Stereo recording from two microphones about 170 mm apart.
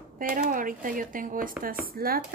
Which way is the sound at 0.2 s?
55° right (ahead or behind).